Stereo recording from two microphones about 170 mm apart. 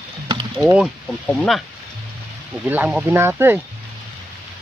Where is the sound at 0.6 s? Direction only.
5° right (ahead or behind).